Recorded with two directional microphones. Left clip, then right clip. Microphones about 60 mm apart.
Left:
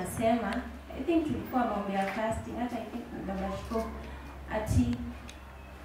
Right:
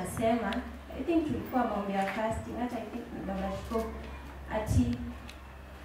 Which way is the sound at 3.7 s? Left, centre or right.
Right.